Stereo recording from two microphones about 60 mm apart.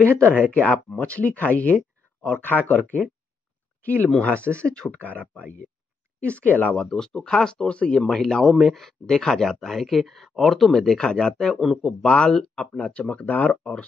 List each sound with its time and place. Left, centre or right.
0.0 s speech: left
6.2 s speech: left
6.9 s speech: centre
11.6 s a man's voice: centre
12.0 s speech: centre